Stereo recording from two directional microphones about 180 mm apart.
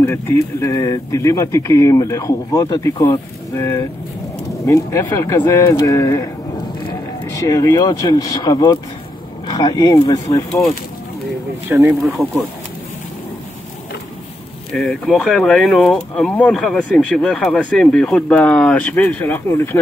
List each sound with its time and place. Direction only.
0.0 s speech: 15° left (ahead or behind)
7.3 s speech: 20° left (ahead or behind)
11.7 s speech: 10° right (ahead or behind)
14.7 s speech: centre (ahead or behind)